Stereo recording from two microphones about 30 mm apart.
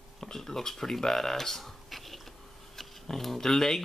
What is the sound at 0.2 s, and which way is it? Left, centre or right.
Speech, centre.